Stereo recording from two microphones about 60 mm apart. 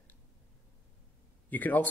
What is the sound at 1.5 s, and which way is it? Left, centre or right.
Speech, left.